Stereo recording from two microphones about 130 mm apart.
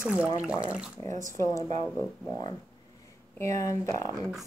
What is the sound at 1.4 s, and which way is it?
Speech, 20° left (ahead or behind).